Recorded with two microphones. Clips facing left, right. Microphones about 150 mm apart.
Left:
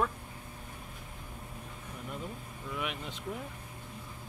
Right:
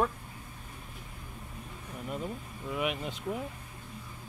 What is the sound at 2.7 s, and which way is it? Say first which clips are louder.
Speech: right 5 dB; 10° right (ahead or behind).